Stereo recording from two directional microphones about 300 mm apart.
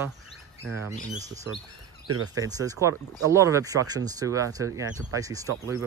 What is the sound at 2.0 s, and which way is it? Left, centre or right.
Speech, right.